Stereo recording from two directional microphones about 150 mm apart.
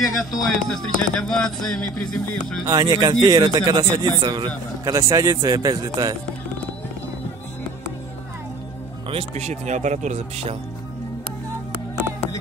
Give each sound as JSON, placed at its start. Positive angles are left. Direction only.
{"t": 0.0, "sound": "speech", "side_deg": 0}
{"t": 2.6, "sound": "a man's voice", "side_deg": -25}
{"t": 9.1, "sound": "speech", "side_deg": -50}